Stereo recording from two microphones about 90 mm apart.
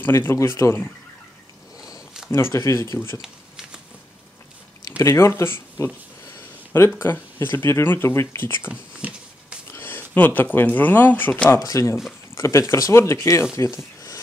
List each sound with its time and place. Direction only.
0.0 s speech: 25° left (ahead or behind)
2.3 s speech: 30° left (ahead or behind)
3.2 s shuffling cards: 5° right (ahead or behind)
4.9 s speech: 30° left (ahead or behind)
7.0 s speech: 25° left (ahead or behind)
9.0 s a sound: 20° right (ahead or behind)
9.7 s speech: 25° left (ahead or behind)
11.6 s speech: 40° left (ahead or behind)